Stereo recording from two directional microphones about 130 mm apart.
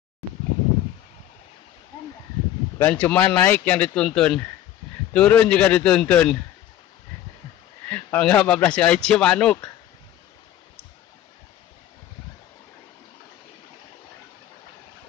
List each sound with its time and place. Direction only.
2.8 s speech: 10° left (ahead or behind)
7.9 s speech: 15° left (ahead or behind)